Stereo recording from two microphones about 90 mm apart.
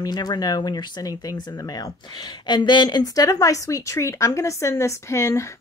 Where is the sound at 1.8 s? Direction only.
55° left (ahead or behind); by 5.6 s 35° left (ahead or behind).